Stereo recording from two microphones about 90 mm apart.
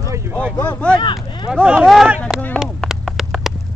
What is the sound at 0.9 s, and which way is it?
Speech, 60° left (ahead or behind).